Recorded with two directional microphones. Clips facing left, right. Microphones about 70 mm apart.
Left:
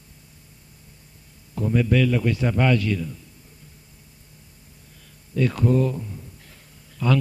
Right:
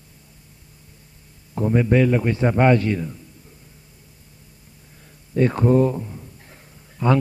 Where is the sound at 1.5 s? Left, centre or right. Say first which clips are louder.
Right 3 dB; right.